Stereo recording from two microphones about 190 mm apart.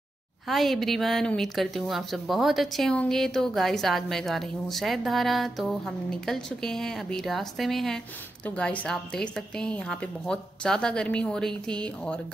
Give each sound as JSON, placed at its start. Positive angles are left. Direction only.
{"t": 0.5, "sound": "a woman's voice", "side_deg": 0}